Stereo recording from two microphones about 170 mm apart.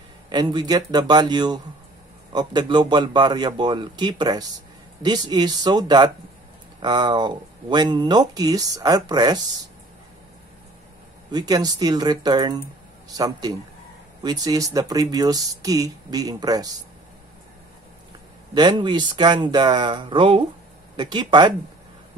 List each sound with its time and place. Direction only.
0.3 s speech: 25° right (ahead or behind)
11.3 s speech: 25° right (ahead or behind)
18.5 s speech: 25° right (ahead or behind)